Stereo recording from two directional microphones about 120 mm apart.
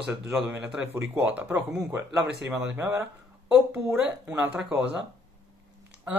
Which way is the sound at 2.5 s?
10° right (ahead or behind).